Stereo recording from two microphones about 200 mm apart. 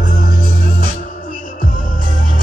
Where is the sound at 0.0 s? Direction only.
50° left (ahead or behind).